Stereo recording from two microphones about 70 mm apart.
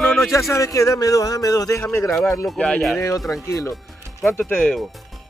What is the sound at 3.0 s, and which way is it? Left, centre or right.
Speech, left.